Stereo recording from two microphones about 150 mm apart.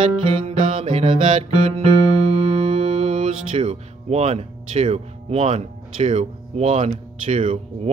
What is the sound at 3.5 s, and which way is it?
Speech, 40° right (ahead or behind).